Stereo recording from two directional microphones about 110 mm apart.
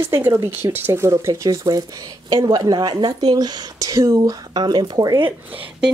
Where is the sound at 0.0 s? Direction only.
25° right (ahead or behind); by 5.2 s 40° right (ahead or behind).